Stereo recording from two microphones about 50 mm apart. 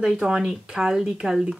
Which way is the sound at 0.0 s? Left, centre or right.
Centre.